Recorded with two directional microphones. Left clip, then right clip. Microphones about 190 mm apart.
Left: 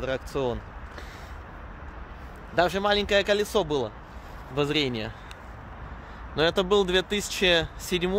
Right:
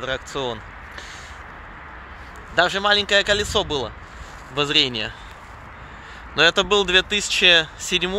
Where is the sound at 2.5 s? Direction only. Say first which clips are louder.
Right 5 dB; 15° left (ahead or behind).